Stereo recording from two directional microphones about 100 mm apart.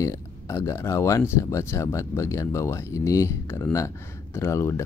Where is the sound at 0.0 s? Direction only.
30° left (ahead or behind).